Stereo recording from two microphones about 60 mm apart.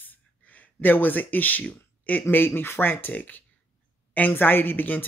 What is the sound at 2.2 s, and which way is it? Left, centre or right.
Speech, left.